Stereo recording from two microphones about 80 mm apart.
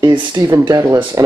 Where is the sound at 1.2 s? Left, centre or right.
Right.